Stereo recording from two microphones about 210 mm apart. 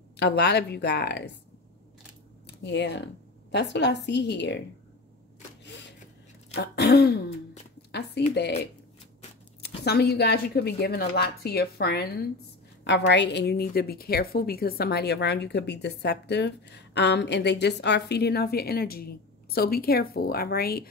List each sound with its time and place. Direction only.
0.2 s a woman's voice: 50° left (ahead or behind)
2.4 s a woman's voice: 55° left (ahead or behind)
6.5 s a woman's voice: 55° left (ahead or behind)
8.2 s a woman's voice: 55° left (ahead or behind)
9.8 s a woman's voice: 50° left (ahead or behind)